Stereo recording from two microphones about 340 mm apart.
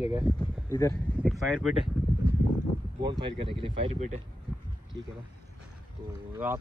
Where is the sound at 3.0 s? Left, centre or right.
Centre.